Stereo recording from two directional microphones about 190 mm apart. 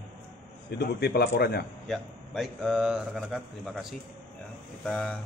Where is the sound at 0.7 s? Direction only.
60° left (ahead or behind).